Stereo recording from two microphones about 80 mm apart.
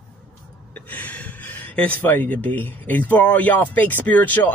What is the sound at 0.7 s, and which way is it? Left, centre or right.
Speech, left.